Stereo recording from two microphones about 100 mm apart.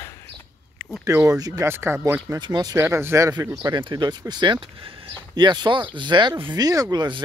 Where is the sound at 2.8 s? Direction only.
25° right (ahead or behind); by 7.2 s 45° right (ahead or behind).